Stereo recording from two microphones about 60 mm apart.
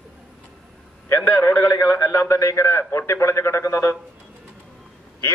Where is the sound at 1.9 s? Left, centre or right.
Left.